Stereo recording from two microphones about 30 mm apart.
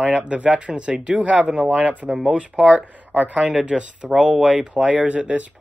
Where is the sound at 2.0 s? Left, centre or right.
Right.